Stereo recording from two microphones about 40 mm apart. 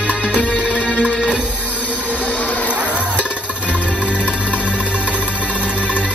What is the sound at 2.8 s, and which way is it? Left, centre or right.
Music, right.